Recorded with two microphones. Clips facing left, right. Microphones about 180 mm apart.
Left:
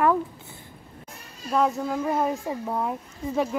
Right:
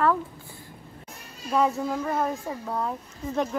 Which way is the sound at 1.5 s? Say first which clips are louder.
Even; centre (ahead or behind).